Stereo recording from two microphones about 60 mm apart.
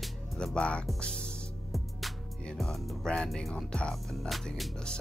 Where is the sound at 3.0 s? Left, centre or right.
Centre.